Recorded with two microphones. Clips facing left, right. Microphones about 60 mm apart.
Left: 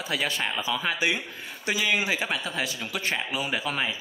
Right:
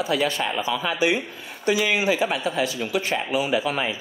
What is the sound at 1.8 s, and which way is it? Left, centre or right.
A man's voice, centre.